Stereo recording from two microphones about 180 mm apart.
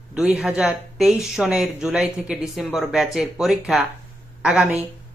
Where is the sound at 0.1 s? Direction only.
5° right (ahead or behind).